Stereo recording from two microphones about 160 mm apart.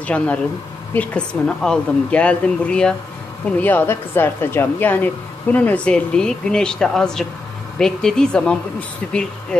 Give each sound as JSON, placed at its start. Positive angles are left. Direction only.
{"t": 0.0, "sound": "a woman's voice", "side_deg": 10}